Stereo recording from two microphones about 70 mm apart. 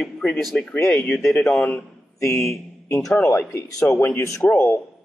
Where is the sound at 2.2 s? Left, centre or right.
Left.